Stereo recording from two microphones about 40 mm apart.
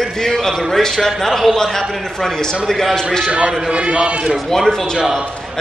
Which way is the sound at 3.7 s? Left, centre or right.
Right.